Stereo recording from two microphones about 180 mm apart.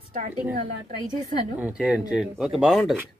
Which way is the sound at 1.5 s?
5° right (ahead or behind).